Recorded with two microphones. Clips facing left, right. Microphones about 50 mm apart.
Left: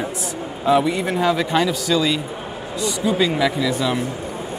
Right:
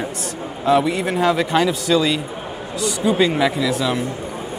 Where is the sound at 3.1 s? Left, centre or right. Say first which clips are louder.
Right 1 dB; centre.